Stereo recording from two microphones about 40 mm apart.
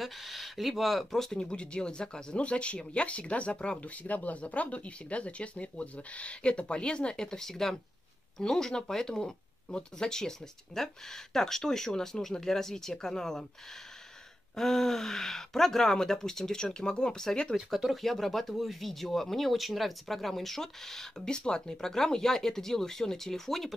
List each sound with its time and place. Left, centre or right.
0.0 s speech: centre
1.4 s speech: left
14.5 s speech: centre
17.9 s speech: centre
21.3 s speech: left